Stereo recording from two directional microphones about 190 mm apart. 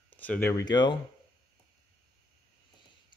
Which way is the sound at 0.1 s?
10° left (ahead or behind).